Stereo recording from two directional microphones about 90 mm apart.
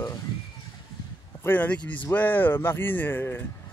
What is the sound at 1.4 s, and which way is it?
Speech, 15° left (ahead or behind).